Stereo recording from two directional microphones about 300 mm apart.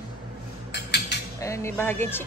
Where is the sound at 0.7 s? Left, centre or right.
Left.